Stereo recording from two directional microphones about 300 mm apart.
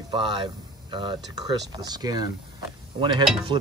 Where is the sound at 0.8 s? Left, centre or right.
Centre.